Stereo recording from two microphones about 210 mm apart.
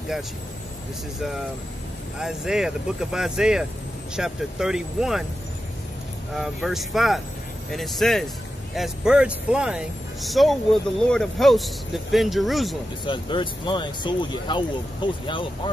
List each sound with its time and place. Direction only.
2.1 s speech: centre (ahead or behind)
6.3 s speech: centre (ahead or behind)
13.0 s speech: 25° left (ahead or behind)